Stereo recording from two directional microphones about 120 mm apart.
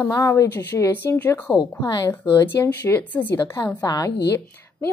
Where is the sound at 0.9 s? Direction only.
15° left (ahead or behind).